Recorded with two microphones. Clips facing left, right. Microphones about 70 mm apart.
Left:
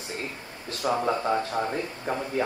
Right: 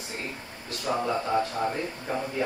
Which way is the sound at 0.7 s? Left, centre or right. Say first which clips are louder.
Left 2 dB; left.